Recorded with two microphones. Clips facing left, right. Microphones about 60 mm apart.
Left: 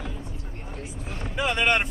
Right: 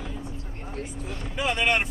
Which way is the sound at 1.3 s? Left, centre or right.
Centre.